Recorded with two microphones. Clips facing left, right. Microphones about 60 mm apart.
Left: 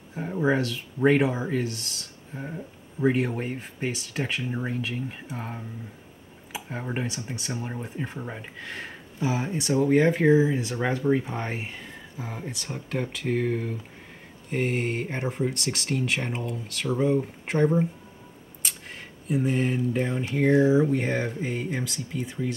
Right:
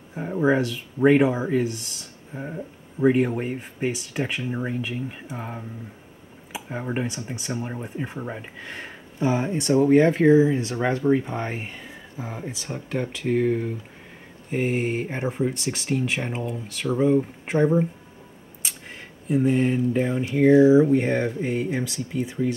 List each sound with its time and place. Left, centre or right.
0.1 s speech: centre